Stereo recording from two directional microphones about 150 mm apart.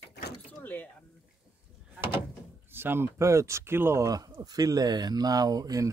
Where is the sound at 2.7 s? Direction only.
15° right (ahead or behind).